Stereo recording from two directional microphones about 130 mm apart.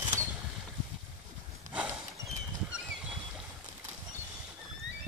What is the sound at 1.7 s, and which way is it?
Horse, 10° right (ahead or behind).